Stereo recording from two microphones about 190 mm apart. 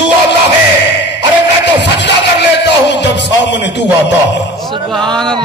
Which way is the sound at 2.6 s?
65° left (ahead or behind).